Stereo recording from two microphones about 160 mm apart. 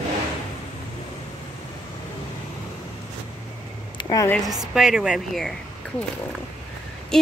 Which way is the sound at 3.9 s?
25° left (ahead or behind).